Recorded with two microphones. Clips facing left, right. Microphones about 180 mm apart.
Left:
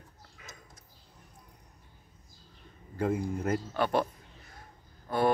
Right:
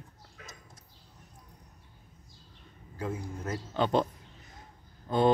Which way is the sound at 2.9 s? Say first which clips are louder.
Left 6 dB; 60° left (ahead or behind).